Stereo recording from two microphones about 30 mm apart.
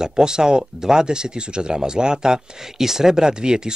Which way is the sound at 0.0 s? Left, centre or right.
Right.